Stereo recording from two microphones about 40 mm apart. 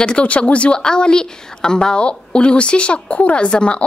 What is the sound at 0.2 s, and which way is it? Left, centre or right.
A woman's voice, left.